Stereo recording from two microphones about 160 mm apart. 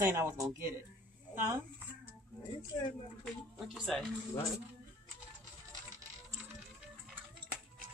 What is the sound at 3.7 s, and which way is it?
Speech, 5° left (ahead or behind).